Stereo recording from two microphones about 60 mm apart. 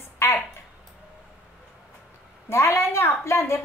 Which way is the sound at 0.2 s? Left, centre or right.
Left.